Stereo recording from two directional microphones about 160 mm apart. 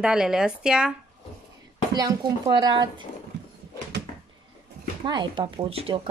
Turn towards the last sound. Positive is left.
turn(degrees=-35)  # may be behind; listen again after turning